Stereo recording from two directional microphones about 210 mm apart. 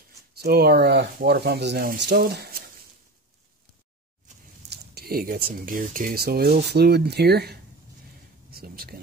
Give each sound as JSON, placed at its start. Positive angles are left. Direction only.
{"t": 0.4, "sound": "speech", "side_deg": -45}
{"t": 4.6, "sound": "speech", "side_deg": -45}